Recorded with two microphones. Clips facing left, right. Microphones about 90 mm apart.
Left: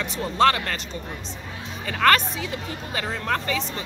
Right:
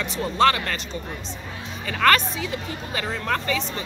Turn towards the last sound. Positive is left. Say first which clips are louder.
# right 1 dB
turn(degrees=30)  # may be behind; listen again after turning